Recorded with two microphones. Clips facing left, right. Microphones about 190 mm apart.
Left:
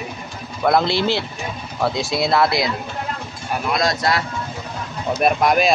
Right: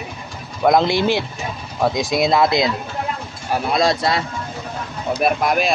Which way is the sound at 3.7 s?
25° right (ahead or behind).